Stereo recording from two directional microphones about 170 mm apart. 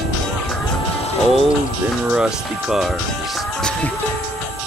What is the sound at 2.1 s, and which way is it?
Speech, 5° right (ahead or behind).